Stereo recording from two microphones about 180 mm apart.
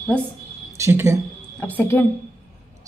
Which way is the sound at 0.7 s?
15° right (ahead or behind).